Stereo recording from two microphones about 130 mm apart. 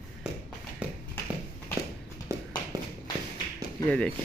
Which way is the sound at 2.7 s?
30° right (ahead or behind).